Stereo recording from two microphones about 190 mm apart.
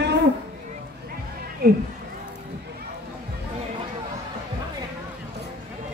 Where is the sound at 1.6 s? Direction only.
55° right (ahead or behind).